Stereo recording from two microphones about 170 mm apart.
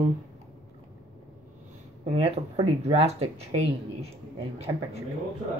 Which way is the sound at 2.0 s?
35° right (ahead or behind).